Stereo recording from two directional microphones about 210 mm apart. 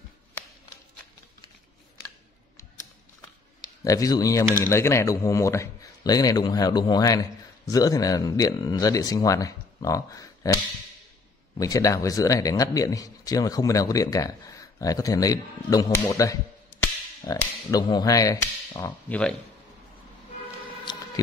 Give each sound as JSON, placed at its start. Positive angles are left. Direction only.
{"t": 3.8, "sound": "speech", "side_deg": 15}